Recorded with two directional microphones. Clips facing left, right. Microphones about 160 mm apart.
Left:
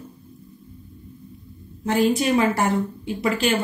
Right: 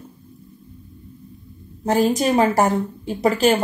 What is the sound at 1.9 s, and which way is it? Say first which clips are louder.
Speech: right 2 dB; 40° right (ahead or behind).